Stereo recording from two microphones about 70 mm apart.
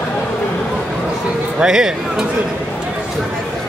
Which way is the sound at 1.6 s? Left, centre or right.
Centre.